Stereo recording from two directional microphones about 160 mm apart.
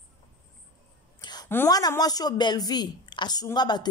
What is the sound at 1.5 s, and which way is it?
A woman's voice, 20° left (ahead or behind).